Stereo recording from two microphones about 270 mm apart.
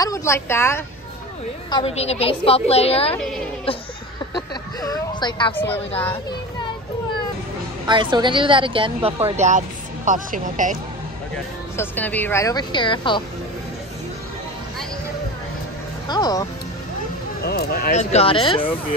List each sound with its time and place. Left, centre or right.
0.0 s speech: centre
1.7 s a woman's voice: centre
3.2 s speech: centre
4.4 s a sound: centre
7.8 s speech: centre
11.7 s speech: centre
16.1 s speech: centre
17.4 s a woman's voice: left; by 18.8 s centre